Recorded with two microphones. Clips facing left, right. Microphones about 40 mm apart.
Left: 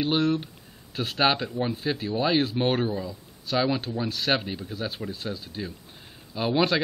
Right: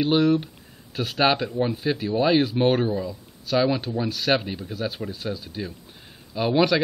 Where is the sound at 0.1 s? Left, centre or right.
Centre.